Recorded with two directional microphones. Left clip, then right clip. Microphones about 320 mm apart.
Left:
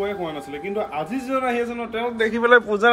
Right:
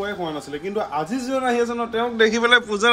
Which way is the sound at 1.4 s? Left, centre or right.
Centre.